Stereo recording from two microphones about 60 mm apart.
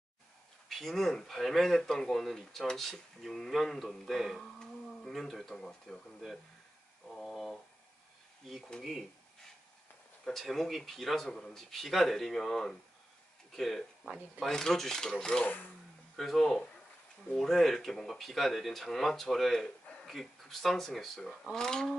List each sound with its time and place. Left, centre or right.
0.7 s speech: centre
7.1 s a sound: centre
10.2 s speech: centre
15.4 s speech: left
16.2 s speech: centre